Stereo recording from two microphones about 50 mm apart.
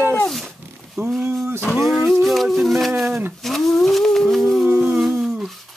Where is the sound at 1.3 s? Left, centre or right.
Right.